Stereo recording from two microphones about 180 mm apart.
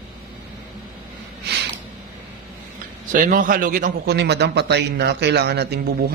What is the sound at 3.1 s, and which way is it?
A man's voice, 45° right (ahead or behind).